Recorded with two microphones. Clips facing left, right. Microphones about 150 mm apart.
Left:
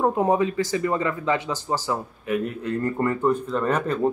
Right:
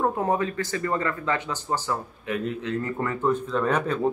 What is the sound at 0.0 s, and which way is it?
Speech, 15° left (ahead or behind).